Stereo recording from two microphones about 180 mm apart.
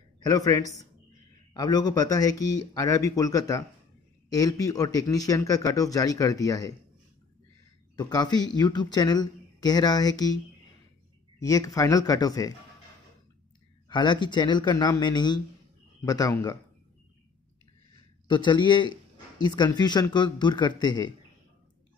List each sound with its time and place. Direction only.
0.3 s speech: 20° left (ahead or behind)
7.9 s speech: 20° left (ahead or behind)
13.8 s speech: 25° left (ahead or behind)
17.9 s speech: 25° left (ahead or behind)